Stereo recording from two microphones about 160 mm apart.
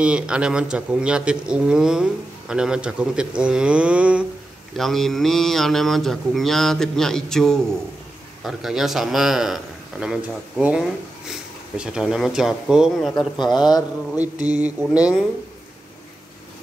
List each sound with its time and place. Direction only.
0.0 s a man's voice: 5° right (ahead or behind)
13.4 s a man's voice: 25° left (ahead or behind)
14.5 s a sound: 10° right (ahead or behind)